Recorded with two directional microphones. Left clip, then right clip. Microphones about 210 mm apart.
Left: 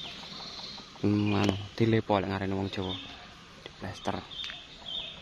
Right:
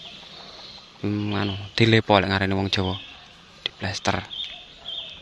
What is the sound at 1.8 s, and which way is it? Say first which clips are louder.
Speech: right 10 dB; 25° right (ahead or behind).